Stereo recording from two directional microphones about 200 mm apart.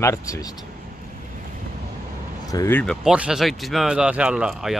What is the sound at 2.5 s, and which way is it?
Speech, 15° left (ahead or behind).